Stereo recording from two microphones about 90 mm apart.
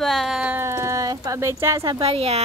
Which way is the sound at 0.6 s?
35° right (ahead or behind).